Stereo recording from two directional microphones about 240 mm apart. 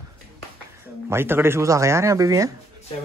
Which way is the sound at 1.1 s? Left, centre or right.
Centre.